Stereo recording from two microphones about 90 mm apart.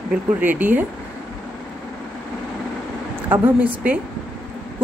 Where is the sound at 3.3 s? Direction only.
15° right (ahead or behind).